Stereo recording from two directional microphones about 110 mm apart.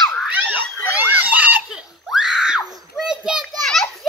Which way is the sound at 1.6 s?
5° right (ahead or behind).